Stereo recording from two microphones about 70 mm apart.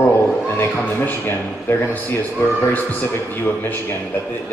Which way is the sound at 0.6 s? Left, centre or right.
Left.